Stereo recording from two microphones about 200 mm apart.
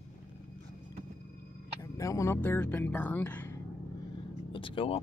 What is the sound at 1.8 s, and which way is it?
Speech, 15° left (ahead or behind).